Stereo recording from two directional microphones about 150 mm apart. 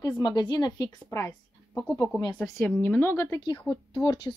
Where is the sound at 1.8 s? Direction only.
5° left (ahead or behind).